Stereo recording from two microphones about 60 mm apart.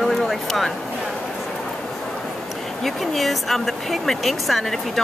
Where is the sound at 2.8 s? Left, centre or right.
Centre.